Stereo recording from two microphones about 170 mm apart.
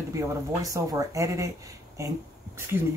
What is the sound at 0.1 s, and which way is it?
Speech, 20° right (ahead or behind).